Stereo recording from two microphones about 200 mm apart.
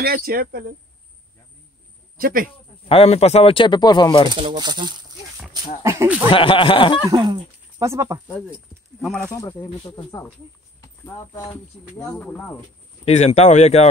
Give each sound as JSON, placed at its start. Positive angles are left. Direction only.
{"t": 0.0, "sound": "speech", "side_deg": -50}
{"t": 2.1, "sound": "speech", "side_deg": -45}
{"t": 2.9, "sound": "speech", "side_deg": 30}
{"t": 4.3, "sound": "speech", "side_deg": -20}
{"t": 6.3, "sound": "speech", "side_deg": 25}
{"t": 7.1, "sound": "speech", "side_deg": -20}
{"t": 9.0, "sound": "speech", "side_deg": 5}
{"t": 9.4, "sound": "speech", "side_deg": 15}
{"t": 10.8, "sound": "clip-clop", "side_deg": 15}
{"t": 12.1, "sound": "speech", "side_deg": 5}
{"t": 13.0, "sound": "speech", "side_deg": 35}